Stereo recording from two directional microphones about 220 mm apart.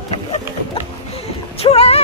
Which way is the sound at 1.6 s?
25° left (ahead or behind).